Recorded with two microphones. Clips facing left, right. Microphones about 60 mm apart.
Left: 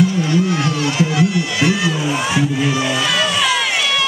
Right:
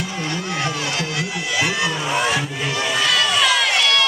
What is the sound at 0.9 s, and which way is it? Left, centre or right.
Music, centre.